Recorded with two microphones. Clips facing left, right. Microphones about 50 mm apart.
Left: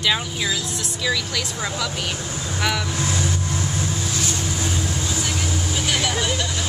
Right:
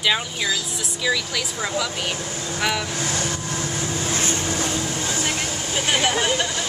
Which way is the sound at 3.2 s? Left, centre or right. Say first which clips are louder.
Left 1 dB; right.